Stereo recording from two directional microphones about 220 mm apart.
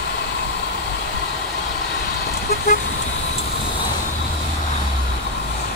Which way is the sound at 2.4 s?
45° left (ahead or behind).